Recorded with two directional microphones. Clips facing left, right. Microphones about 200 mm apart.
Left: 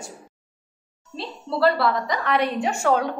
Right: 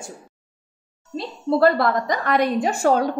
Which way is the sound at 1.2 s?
50° right (ahead or behind).